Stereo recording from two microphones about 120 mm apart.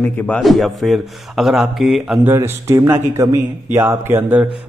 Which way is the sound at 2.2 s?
20° right (ahead or behind).